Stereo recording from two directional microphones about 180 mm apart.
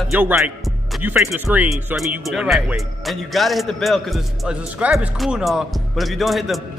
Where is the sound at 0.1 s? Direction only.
10° right (ahead or behind).